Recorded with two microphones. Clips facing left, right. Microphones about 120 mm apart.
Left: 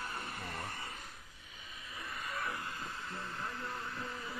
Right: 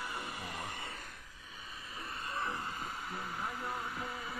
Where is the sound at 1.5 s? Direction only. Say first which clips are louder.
Right 2 dB; 35° right (ahead or behind).